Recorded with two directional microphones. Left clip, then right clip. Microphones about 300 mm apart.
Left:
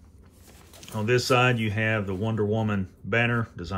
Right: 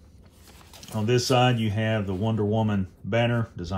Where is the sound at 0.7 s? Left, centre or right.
Centre.